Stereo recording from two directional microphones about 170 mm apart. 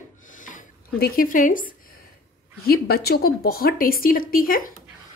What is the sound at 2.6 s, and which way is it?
A woman's voice, 65° left (ahead or behind).